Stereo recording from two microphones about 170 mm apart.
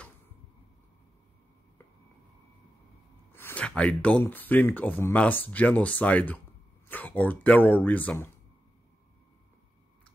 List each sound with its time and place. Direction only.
3.3 s speech: 10° left (ahead or behind)